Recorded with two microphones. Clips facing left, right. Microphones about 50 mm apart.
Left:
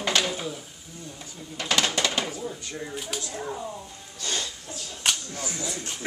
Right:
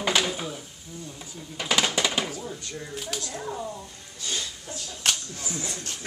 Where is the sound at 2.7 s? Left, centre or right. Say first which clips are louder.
Left 1 dB; centre.